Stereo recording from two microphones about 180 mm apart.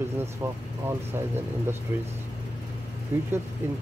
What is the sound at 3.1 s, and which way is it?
Speech, 10° right (ahead or behind).